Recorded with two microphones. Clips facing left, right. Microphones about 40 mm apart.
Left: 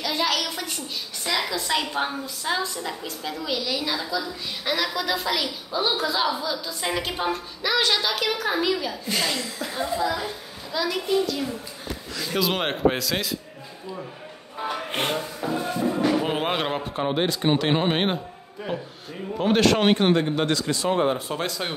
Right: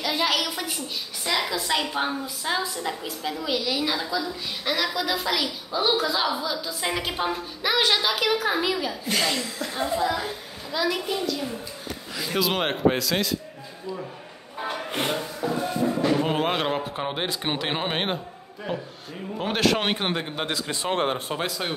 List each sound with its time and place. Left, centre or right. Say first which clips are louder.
0.0 s a woman's voice: even; centre
9.9 s a man's voice: right 1 dB; centre
10.7 s a woman's voice: left 2 dB; centre
15.4 s music: right 1 dB; centre
16.1 s a woman's voice: even; centre
20.9 s speech: left 1 dB; right
21.4 s a woman's voice: even; centre